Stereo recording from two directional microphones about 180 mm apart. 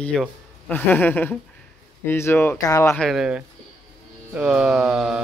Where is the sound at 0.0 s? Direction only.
5° left (ahead or behind).